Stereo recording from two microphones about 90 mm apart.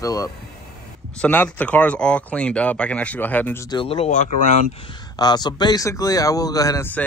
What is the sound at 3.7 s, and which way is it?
Speech, 75° left (ahead or behind).